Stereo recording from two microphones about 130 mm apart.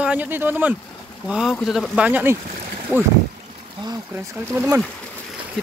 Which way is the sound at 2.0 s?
15° right (ahead or behind).